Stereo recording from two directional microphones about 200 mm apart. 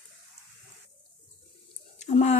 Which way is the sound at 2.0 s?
35° left (ahead or behind).